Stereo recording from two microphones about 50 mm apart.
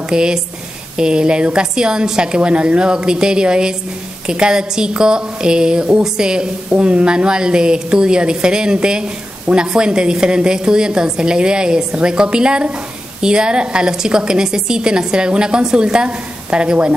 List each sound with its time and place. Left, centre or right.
0.1 s a woman's voice: centre